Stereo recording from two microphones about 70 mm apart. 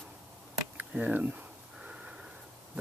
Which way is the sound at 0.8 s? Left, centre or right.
Right.